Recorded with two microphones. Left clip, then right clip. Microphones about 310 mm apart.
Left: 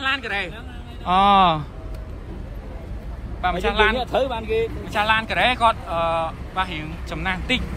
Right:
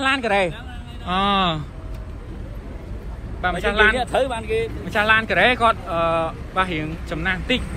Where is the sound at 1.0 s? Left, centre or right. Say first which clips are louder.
Left 5 dB; centre.